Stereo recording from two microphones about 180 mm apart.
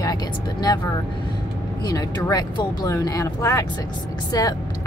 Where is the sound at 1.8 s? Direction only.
20° left (ahead or behind).